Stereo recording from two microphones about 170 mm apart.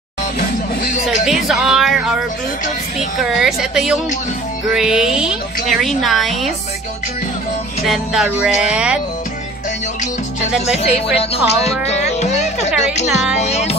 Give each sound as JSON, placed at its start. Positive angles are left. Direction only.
{"t": 1.0, "sound": "speech", "side_deg": 0}
{"t": 3.2, "sound": "speech", "side_deg": 0}
{"t": 7.8, "sound": "speech", "side_deg": 0}
{"t": 10.8, "sound": "music", "side_deg": 35}